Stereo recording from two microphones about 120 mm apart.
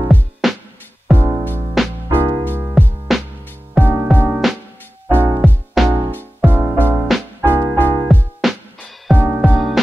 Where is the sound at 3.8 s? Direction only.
15° right (ahead or behind).